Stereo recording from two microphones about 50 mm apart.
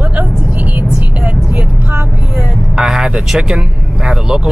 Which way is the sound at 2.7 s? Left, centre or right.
Centre.